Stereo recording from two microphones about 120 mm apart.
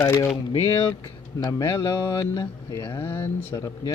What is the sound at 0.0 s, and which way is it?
Mantra, 30° left (ahead or behind).